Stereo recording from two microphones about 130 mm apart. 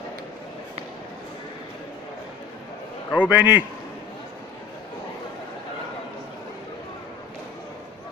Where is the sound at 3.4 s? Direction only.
15° right (ahead or behind).